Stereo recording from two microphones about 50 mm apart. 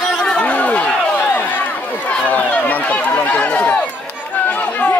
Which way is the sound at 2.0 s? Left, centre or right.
Left.